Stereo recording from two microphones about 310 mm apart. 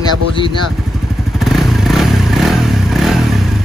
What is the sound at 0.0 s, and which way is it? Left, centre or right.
Speech, centre.